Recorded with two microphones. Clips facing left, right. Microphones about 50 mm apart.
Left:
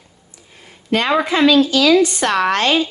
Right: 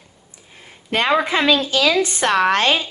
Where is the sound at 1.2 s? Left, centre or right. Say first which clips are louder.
Left 4 dB; right.